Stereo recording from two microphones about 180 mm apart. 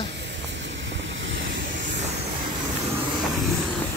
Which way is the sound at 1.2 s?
90° right.